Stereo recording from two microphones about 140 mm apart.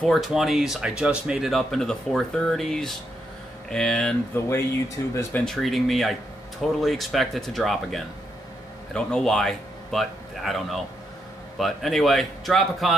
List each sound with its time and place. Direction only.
0.0 s speech: centre (ahead or behind)
4.4 s speech: 20° left (ahead or behind)
5.4 s speech: centre (ahead or behind)